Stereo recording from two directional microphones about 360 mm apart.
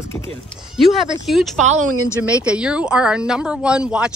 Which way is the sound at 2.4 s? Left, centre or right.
Centre.